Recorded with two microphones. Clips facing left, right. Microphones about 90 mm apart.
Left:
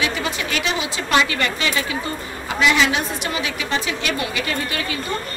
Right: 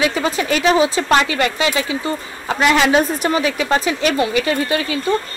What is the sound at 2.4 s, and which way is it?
A woman's voice, 45° right (ahead or behind).